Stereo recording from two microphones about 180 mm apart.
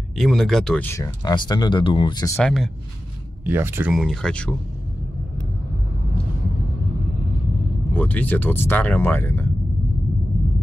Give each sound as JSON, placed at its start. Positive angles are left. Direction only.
{"t": 0.2, "sound": "speech", "side_deg": 0}
{"t": 2.3, "sound": "speech", "side_deg": 5}
{"t": 3.4, "sound": "speech", "side_deg": -10}
{"t": 7.9, "sound": "speech", "side_deg": 10}